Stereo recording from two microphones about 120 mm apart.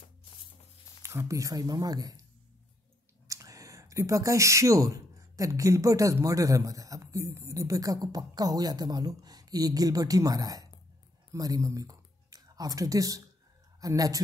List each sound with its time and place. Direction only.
1.0 s speech: 25° right (ahead or behind)
3.3 s speech: 30° right (ahead or behind)